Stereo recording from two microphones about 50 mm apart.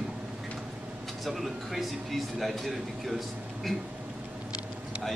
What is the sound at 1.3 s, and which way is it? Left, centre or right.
A man's voice, centre.